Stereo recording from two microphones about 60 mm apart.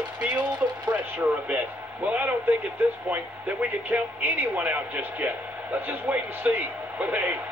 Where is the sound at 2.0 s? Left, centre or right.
Right.